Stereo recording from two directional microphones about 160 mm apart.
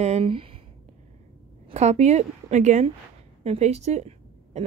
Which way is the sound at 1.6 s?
45° right (ahead or behind).